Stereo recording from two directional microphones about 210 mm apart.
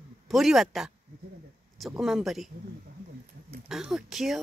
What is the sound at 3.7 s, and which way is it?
Speech, 5° right (ahead or behind).